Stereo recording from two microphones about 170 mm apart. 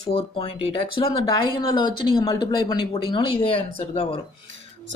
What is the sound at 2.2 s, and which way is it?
Speech, 30° left (ahead or behind).